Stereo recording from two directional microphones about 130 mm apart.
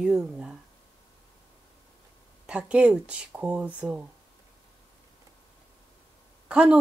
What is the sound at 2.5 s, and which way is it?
Speech, 10° right (ahead or behind).